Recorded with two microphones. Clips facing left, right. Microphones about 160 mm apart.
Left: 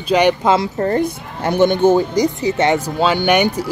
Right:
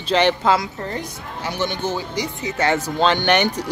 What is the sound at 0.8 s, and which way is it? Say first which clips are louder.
A woman's voice: left 11 dB; 55° left (ahead or behind).